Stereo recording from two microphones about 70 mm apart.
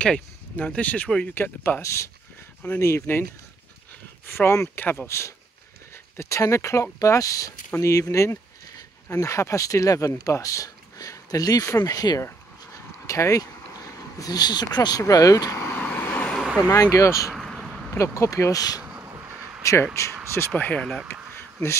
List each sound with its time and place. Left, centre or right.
0.0 s speech: centre; by 1.8 s left
1.8 s speech: left
4.3 s speech: left
13.0 s speech: left
15.7 s vehicle: left
16.7 s speech: left
17.3 s a sound: centre
17.6 s a sound: centre
17.9 s speech: left
19.8 s speech: left
20.5 s speech: left
21.1 s a sound: left